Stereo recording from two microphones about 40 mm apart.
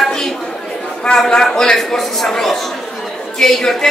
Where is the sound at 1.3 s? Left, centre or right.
Centre.